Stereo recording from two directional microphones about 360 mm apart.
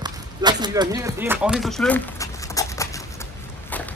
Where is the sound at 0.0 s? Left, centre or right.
Centre.